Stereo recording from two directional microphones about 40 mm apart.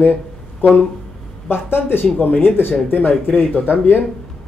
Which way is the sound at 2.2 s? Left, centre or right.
Left.